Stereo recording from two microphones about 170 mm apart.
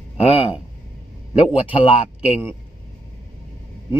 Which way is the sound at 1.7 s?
35° left (ahead or behind).